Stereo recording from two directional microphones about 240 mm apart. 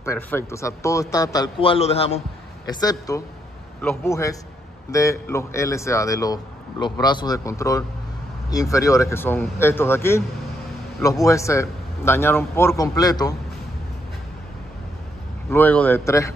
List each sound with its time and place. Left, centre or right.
0.0 s speech: centre
2.7 s speech: centre
15.5 s speech: centre